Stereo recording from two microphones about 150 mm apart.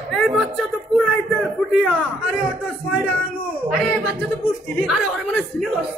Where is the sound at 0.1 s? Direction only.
Centre (ahead or behind).